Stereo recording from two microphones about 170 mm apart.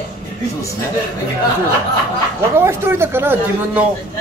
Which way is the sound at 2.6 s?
15° right (ahead or behind).